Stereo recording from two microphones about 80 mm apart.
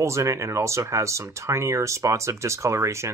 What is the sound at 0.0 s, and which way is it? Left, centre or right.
Speech, right.